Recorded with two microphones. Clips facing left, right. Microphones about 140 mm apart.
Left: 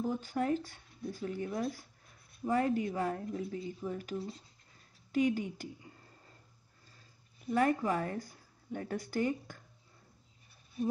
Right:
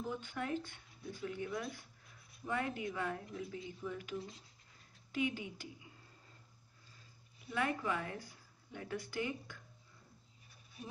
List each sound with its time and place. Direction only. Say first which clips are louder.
0.0 s speech: left 8 dB; 35° left (ahead or behind)
7.4 s speech: left 7 dB; 40° left (ahead or behind)